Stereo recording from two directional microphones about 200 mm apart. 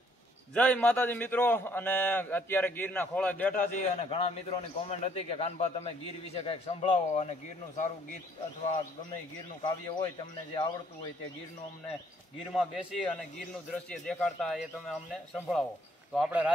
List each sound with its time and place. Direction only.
0.6 s a man's voice: 5° left (ahead or behind)
3.5 s a man's voice: 30° left (ahead or behind)
9.6 s speech: 20° left (ahead or behind)
12.5 s a man's voice: centre (ahead or behind)
16.1 s a man's voice: 5° right (ahead or behind)